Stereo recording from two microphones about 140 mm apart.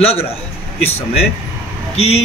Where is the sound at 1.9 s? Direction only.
45° left (ahead or behind).